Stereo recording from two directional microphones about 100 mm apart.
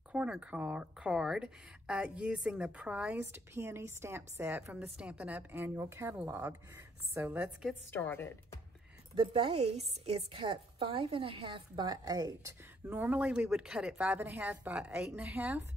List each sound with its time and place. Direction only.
0.1 s speech: 10° right (ahead or behind)
7.9 s a woman's voice: 20° left (ahead or behind)
9.3 s a woman's voice: 80° right
10.4 s a woman's voice: 60° right (ahead or behind); by 12.5 s 35° right (ahead or behind)
12.8 s speech: 15° right (ahead or behind)